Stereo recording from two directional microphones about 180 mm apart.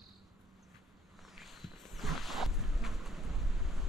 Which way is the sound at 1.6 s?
Centre (ahead or behind).